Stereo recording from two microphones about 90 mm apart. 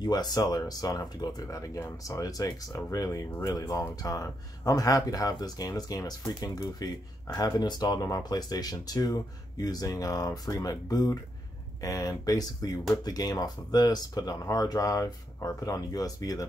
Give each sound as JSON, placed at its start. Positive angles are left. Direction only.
{"t": 0.0, "sound": "speech", "side_deg": 50}